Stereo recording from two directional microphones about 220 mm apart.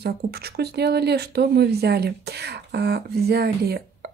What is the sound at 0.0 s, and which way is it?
Speech, 45° right (ahead or behind).